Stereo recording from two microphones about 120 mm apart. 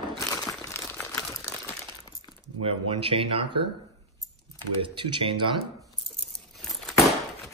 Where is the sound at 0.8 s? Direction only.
15° left (ahead or behind).